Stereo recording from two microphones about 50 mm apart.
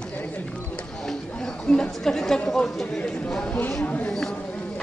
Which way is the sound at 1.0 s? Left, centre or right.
Centre.